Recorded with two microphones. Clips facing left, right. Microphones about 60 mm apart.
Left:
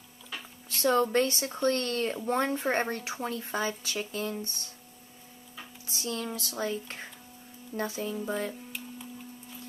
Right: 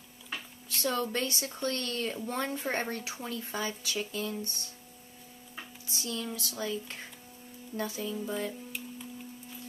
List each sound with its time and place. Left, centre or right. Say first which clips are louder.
0.7 s speech: left 6 dB; left
5.9 s a sound: left 3 dB; left
6.2 s speech: left 3 dB; left
8.3 s music: left 3 dB; left